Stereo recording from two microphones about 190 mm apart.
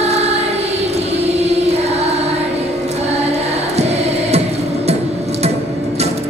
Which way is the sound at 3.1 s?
35° right (ahead or behind).